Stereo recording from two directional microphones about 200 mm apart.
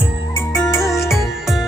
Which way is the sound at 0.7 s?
15° left (ahead or behind).